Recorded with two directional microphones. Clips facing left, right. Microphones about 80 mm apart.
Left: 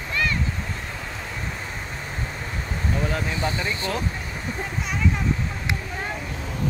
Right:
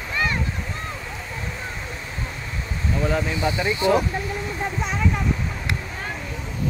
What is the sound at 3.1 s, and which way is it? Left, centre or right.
Speech, centre.